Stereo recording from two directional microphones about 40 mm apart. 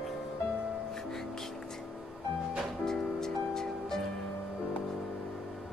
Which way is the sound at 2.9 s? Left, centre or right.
Centre.